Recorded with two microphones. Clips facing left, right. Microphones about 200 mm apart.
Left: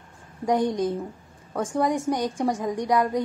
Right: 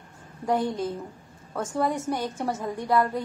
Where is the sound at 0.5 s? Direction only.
15° left (ahead or behind).